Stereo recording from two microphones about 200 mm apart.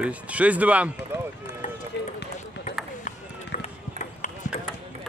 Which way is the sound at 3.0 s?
40° left (ahead or behind).